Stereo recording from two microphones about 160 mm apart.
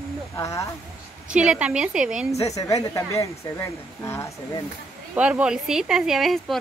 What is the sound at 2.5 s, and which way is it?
Speech, 20° left (ahead or behind).